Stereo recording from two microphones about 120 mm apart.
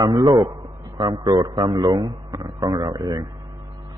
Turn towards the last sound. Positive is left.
turn(degrees=-30)  # may be behind; listen again after turning